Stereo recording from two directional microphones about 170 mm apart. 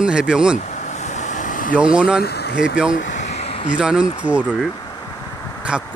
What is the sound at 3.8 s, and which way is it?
Speech, 5° right (ahead or behind).